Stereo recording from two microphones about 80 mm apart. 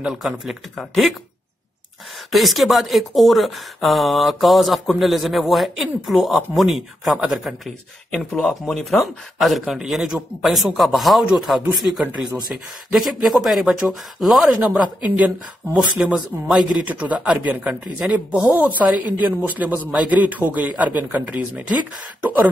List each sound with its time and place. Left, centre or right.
0.0 s speech: centre
2.3 s speech: centre
8.1 s speech: centre
12.9 s speech: centre
14.6 s speech: right
18.5 s speech: right